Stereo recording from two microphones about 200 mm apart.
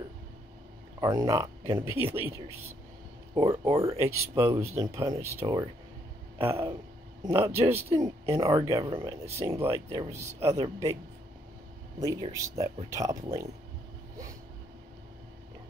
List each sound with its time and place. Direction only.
1.0 s speech: 20° right (ahead or behind)
3.3 s speech: 20° right (ahead or behind)
12.0 s speech: 15° right (ahead or behind)